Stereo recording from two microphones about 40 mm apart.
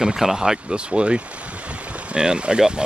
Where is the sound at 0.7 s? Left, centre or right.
Right.